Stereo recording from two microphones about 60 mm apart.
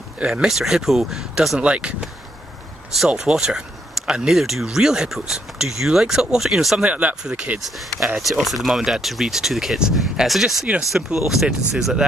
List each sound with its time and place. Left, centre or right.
0.2 s speech: centre
1.6 s speech: centre
3.1 s speech: centre
6.8 s speech: right
8.2 s speech: centre